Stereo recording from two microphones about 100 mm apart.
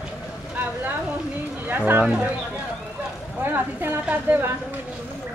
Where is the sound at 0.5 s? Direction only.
20° right (ahead or behind).